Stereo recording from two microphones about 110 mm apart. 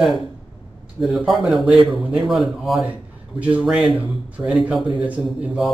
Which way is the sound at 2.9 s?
10° right (ahead or behind).